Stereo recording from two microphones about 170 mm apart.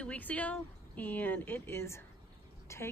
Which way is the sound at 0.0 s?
10° left (ahead or behind).